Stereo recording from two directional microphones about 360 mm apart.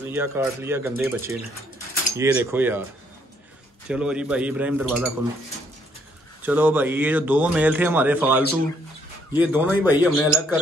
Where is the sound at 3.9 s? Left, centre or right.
Centre.